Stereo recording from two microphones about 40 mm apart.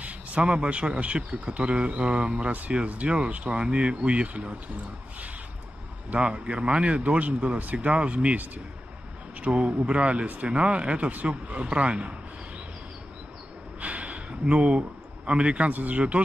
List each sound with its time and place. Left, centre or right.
0.0 s speech: right
6.1 s a man's voice: right
13.7 s a sound: right
14.4 s a man's voice: right
15.7 s speech: right